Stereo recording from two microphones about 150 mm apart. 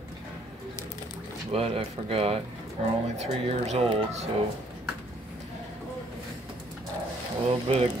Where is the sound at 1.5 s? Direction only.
40° right (ahead or behind).